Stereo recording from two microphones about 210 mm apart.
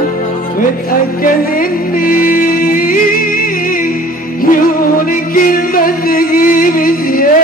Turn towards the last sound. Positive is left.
turn(degrees=40)  # may be behind; listen again after turning